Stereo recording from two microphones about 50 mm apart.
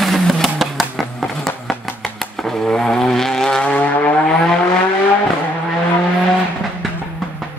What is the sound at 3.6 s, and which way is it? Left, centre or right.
Vehicle, left.